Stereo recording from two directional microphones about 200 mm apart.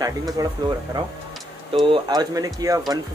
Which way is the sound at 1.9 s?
20° right (ahead or behind).